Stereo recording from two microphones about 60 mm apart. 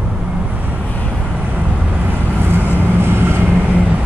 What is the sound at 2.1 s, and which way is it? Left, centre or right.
Vehicle, right.